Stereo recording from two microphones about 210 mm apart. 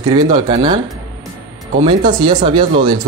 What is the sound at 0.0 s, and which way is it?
Speech, 25° right (ahead or behind).